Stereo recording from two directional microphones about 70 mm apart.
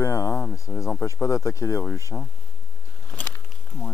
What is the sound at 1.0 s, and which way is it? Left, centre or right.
Speech, left.